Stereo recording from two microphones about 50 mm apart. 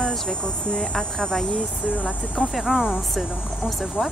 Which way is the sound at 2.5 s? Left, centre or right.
Centre.